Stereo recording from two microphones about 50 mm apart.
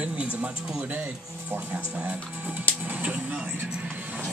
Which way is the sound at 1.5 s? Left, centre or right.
Right.